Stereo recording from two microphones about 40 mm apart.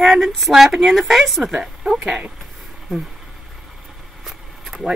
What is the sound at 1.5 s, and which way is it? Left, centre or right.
Speech, centre.